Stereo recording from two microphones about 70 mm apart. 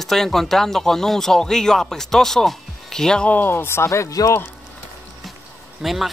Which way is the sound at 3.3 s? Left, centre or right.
Left.